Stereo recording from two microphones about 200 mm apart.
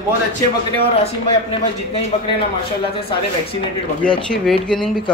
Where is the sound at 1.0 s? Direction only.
30° left (ahead or behind).